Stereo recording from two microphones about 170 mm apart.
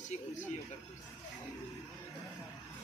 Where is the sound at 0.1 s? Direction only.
40° left (ahead or behind).